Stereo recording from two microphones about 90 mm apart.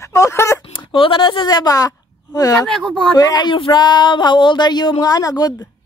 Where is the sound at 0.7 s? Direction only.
70° left (ahead or behind); by 2.5 s 40° left (ahead or behind).